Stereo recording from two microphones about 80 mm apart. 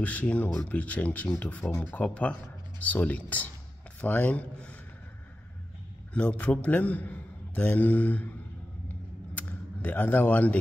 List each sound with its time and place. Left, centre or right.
0.0 s a man's voice: centre
6.1 s a man's voice: centre
9.3 s a sound: centre